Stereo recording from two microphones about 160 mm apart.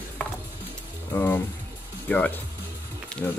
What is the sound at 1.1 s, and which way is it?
Speech, 15° left (ahead or behind).